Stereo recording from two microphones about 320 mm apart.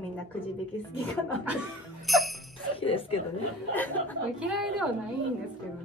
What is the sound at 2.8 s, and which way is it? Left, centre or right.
Speech, centre.